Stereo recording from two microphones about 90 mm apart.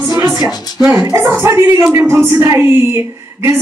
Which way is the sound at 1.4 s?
30° right (ahead or behind).